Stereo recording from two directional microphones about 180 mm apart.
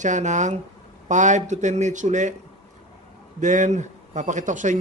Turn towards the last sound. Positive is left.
turn(degrees=-45)  # may be behind; listen again after turning